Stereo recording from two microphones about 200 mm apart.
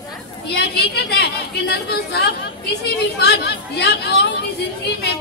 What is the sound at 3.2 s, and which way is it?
Speech, 55° left (ahead or behind).